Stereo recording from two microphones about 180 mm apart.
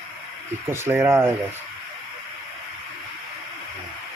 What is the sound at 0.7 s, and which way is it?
Speech, 15° right (ahead or behind).